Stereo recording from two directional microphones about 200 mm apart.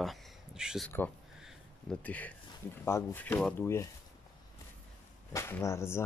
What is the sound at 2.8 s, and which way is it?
Speech, 10° left (ahead or behind).